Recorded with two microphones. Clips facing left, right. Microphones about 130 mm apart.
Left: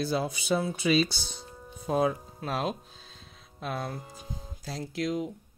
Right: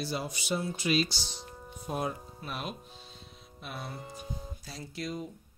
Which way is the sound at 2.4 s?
90° left.